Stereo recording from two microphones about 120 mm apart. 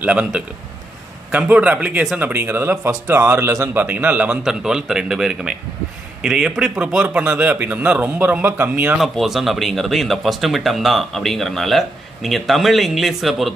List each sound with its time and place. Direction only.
0.0 s a man's voice: 10° right (ahead or behind)
8.9 s speech: centre (ahead or behind)